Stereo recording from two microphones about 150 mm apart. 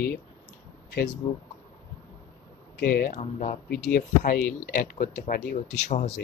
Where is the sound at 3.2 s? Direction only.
55° left (ahead or behind).